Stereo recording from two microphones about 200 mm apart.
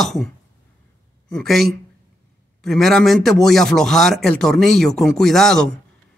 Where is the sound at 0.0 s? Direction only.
Centre (ahead or behind).